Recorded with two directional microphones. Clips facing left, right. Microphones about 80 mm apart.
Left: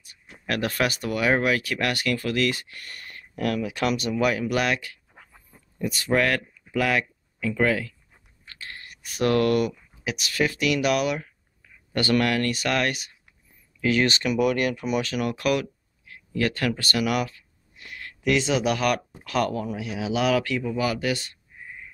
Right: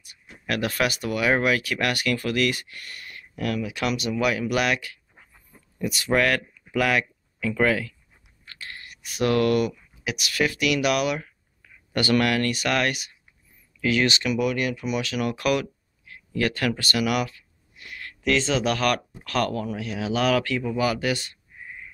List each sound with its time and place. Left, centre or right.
0.7 s speech: left
5.2 s a sound: left
5.9 s speech: centre
6.1 s speech: left
8.5 s a sound: left
10.0 s speech: left
14.5 s speech: left
15.4 s speech: left
21.0 s speech: right